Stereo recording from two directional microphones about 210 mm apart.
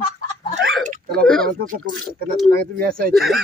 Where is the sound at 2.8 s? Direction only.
45° right (ahead or behind).